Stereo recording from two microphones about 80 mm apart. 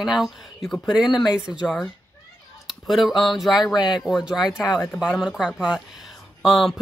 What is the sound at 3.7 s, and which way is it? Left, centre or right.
Speech, left.